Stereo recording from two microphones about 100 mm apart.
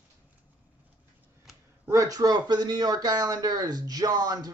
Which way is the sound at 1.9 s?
35° right (ahead or behind).